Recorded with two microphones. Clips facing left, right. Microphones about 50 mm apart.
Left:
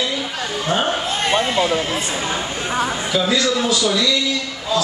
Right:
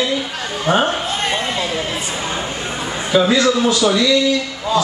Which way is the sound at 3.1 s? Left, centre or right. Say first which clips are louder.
Right 7 dB; centre.